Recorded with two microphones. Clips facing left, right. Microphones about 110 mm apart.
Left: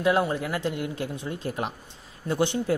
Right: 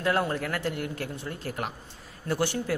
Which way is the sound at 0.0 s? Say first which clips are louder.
Left 3 dB; 15° left (ahead or behind).